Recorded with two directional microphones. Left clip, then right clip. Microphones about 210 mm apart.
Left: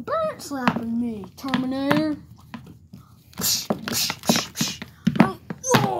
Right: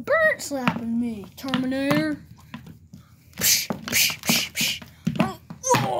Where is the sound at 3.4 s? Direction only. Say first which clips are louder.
Right 2 dB; 30° right (ahead or behind).